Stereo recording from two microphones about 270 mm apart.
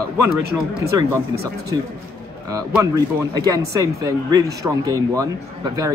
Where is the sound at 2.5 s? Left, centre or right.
Centre.